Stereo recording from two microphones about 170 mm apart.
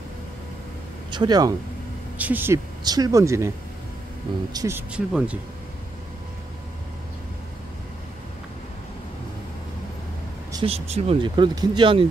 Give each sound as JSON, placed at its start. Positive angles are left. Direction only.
{"t": 1.1, "sound": "speech", "side_deg": -25}
{"t": 2.1, "sound": "speech", "side_deg": -10}
{"t": 2.8, "sound": "speech", "side_deg": -20}
{"t": 4.6, "sound": "speech", "side_deg": -15}
{"t": 10.6, "sound": "speech", "side_deg": -35}